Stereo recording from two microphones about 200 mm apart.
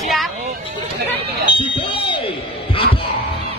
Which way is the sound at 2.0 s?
25° left (ahead or behind).